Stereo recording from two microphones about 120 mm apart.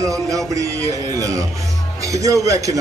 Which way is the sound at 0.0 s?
25° right (ahead or behind).